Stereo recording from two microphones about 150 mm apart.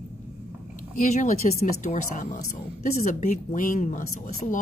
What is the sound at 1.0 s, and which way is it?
Speech, 55° left (ahead or behind).